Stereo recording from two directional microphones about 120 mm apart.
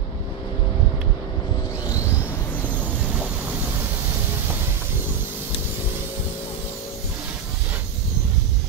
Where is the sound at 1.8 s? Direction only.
25° left (ahead or behind).